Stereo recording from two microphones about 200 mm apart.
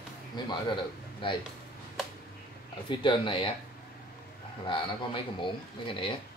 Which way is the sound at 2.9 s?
25° left (ahead or behind).